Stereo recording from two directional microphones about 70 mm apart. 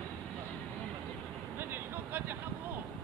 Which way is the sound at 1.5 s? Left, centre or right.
Right.